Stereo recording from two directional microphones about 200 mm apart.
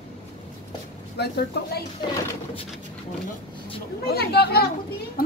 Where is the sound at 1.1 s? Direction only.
55° left (ahead or behind).